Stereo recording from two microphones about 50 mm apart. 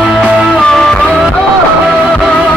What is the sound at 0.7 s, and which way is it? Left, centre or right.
Music, centre.